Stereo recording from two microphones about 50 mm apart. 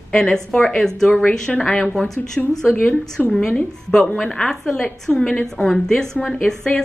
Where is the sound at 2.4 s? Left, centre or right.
Left.